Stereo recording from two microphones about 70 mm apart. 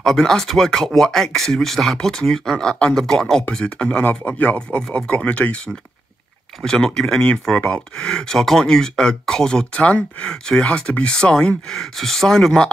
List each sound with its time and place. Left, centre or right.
0.0 s speech: centre
6.6 s speech: centre